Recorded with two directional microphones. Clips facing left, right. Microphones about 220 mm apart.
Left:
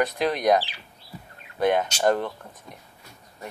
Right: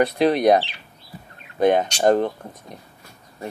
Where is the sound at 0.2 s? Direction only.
25° right (ahead or behind).